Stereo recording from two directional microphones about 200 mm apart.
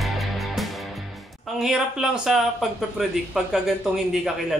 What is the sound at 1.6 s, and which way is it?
Speech, 5° right (ahead or behind).